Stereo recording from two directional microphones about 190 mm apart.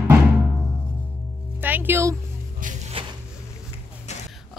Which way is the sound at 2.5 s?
45° right (ahead or behind).